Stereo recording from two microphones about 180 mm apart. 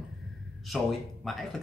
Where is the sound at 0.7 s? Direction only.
Centre (ahead or behind).